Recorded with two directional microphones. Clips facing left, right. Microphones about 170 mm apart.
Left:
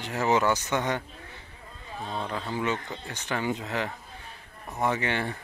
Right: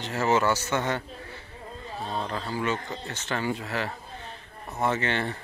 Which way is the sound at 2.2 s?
15° left (ahead or behind).